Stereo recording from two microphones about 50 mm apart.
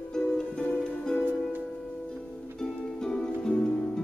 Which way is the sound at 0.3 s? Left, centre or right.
Centre.